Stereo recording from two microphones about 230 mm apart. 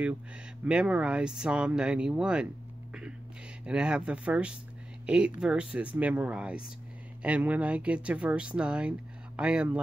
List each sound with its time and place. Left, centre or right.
0.7 s speech: centre
2.9 s a sound: centre
3.6 s speech: centre